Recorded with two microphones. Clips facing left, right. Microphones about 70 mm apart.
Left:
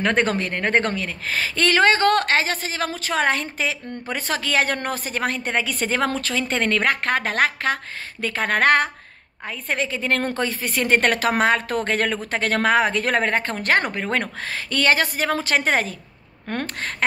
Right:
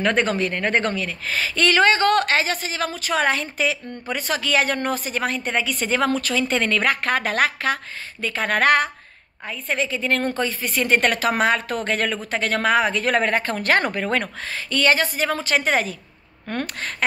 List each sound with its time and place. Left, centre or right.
0.0 s a woman's voice: left
8.2 s speech: left
9.5 s a woman's voice: left
14.5 s a woman's voice: left